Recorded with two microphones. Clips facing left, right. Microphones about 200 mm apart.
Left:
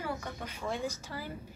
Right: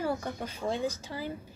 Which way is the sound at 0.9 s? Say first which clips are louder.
Right 4 dB; 20° right (ahead or behind).